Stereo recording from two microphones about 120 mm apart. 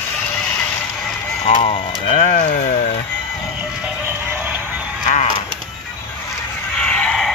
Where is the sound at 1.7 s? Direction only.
65° left (ahead or behind).